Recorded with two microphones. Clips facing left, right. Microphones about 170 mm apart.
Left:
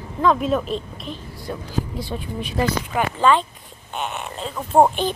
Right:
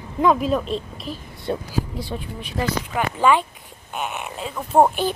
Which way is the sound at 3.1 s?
10° right (ahead or behind).